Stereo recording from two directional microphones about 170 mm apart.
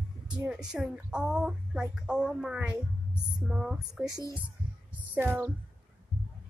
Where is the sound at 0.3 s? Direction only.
5° right (ahead or behind).